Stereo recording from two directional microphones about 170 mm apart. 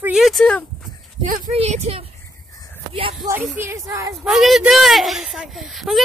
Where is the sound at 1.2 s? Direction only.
40° right (ahead or behind).